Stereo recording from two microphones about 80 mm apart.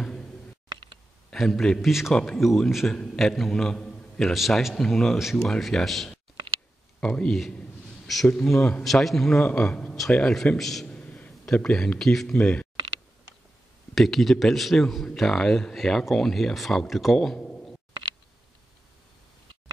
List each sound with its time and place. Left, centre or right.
1.3 s a man's voice: centre
8.1 s a man's voice: centre
9.4 s a man's voice: centre
10.9 s a sound: centre
11.4 s speech: centre
13.9 s a man's voice: centre